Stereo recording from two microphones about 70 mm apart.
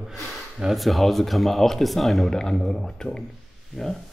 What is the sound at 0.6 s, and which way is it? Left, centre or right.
Speech, centre.